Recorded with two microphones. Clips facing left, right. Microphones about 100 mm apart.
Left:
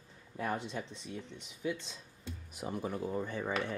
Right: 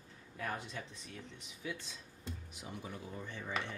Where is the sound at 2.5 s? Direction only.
45° left (ahead or behind).